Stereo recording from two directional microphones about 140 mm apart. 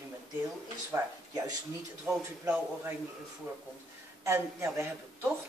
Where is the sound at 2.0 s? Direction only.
10° right (ahead or behind).